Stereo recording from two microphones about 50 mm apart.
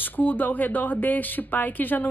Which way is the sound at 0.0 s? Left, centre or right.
Left.